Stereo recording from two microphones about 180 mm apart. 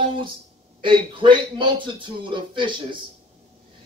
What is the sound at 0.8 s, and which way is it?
Speech, 25° right (ahead or behind).